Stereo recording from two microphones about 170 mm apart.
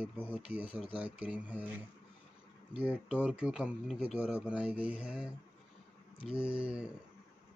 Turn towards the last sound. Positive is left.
turn(degrees=-5)  # may be behind; listen again after turning